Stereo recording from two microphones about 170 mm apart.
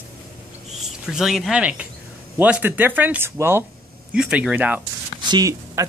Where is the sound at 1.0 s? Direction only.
Centre (ahead or behind).